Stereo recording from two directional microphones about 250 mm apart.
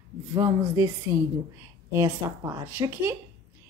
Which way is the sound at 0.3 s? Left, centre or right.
Centre.